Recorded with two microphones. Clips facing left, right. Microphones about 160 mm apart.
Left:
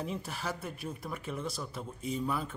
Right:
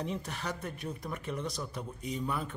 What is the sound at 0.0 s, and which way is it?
Speech, 5° left (ahead or behind).